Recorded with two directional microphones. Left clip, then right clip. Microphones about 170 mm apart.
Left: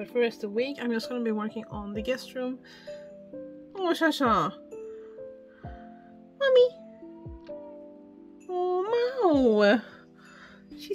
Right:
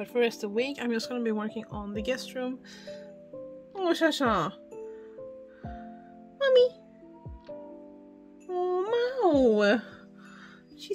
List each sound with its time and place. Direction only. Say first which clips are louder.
0.0 s speech: even; 30° right (ahead or behind)
3.7 s speech: even; 5° right (ahead or behind)
5.6 s music: right 2 dB; 15° right (ahead or behind)
6.3 s music: left 1 dB; centre (ahead or behind)
8.5 s music: left 1 dB; centre (ahead or behind)